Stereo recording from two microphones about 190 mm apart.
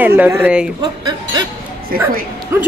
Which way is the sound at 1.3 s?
20° right (ahead or behind).